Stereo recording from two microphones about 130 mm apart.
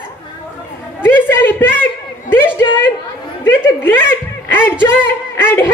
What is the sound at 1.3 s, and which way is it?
A woman's voice, 15° left (ahead or behind).